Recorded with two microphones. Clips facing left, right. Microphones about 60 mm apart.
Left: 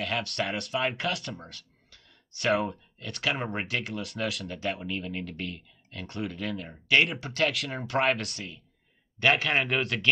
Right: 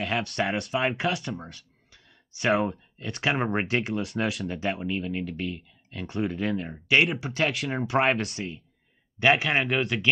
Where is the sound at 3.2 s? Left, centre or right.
Right.